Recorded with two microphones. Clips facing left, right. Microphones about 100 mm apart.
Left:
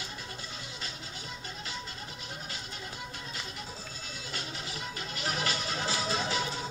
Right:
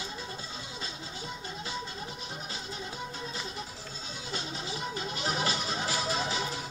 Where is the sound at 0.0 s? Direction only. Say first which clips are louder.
Right 3 dB; 25° right (ahead or behind).